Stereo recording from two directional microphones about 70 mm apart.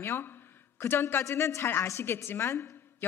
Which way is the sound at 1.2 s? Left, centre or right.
Left.